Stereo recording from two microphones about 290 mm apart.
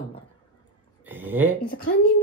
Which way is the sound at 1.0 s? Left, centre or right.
Centre.